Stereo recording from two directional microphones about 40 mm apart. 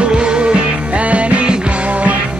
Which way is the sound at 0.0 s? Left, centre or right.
Right.